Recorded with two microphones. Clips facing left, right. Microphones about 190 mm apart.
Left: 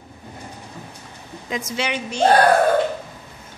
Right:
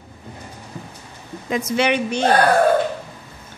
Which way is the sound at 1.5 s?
55° right (ahead or behind).